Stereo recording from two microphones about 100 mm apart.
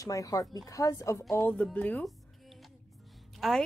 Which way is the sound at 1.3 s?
15° left (ahead or behind).